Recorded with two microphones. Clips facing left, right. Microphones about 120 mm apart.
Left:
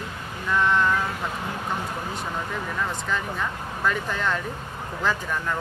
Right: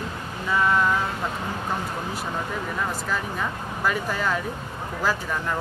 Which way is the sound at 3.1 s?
5° right (ahead or behind).